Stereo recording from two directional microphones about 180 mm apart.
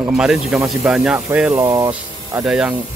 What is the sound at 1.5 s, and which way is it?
Speech, 15° right (ahead or behind).